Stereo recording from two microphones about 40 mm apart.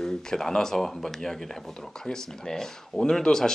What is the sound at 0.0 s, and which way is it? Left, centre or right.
Speech, centre.